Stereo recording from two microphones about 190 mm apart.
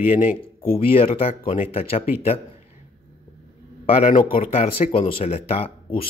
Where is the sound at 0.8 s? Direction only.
30° left (ahead or behind).